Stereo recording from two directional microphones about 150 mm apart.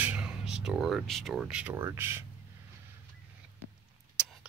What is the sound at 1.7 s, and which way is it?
Speech, 15° right (ahead or behind).